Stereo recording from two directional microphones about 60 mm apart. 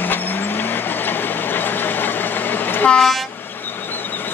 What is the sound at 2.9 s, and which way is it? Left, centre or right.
Train, centre.